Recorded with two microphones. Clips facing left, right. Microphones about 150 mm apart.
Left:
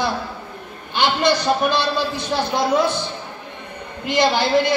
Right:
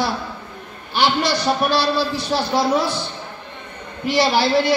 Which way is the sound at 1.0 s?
20° left (ahead or behind).